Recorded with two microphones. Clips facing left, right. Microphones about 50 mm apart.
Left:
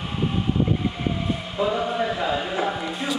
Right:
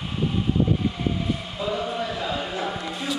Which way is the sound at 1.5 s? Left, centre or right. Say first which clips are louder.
Left 6 dB; centre.